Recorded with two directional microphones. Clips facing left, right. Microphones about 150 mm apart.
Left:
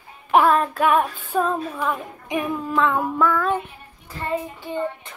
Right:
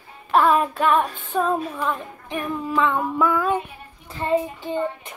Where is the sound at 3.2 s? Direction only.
10° right (ahead or behind).